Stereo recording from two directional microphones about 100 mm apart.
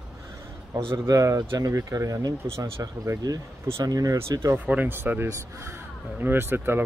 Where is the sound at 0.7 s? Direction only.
45° right (ahead or behind).